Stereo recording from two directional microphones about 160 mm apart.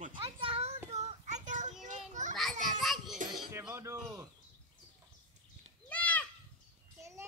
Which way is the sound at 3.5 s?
20° right (ahead or behind).